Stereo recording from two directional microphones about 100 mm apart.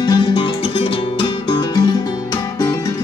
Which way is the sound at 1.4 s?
45° left (ahead or behind).